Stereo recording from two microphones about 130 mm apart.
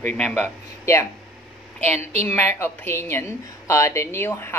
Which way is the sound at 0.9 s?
20° left (ahead or behind).